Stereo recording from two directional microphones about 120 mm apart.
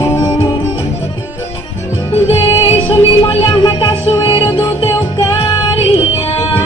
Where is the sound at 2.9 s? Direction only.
45° left (ahead or behind).